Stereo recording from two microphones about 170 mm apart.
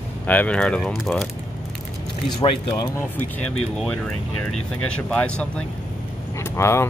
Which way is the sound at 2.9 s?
10° left (ahead or behind).